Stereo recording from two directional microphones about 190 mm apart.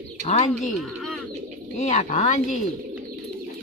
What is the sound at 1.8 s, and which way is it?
Speech, 40° left (ahead or behind).